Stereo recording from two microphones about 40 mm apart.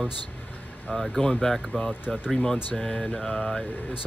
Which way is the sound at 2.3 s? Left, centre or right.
Centre.